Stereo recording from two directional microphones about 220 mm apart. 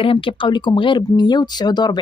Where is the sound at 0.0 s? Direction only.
25° left (ahead or behind).